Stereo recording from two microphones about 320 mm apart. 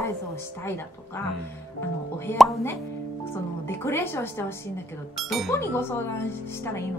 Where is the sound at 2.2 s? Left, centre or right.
Centre.